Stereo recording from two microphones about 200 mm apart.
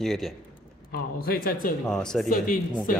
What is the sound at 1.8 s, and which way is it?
Speech, 5° left (ahead or behind).